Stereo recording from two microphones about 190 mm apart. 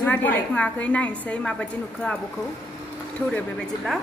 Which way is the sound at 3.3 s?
Centre (ahead or behind).